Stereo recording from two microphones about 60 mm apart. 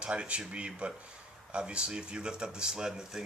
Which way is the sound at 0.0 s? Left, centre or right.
Centre.